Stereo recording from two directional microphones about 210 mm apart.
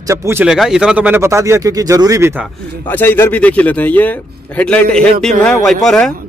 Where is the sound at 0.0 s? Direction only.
15° right (ahead or behind).